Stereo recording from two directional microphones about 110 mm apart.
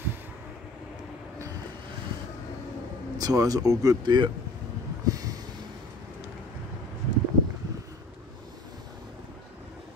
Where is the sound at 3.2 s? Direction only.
35° right (ahead or behind).